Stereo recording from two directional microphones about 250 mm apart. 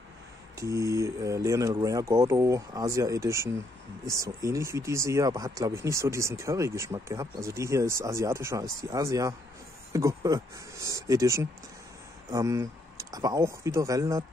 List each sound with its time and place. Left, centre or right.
0.6 s speech: centre